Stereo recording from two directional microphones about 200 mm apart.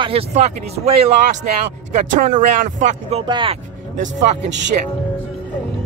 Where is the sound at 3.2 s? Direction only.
25° right (ahead or behind).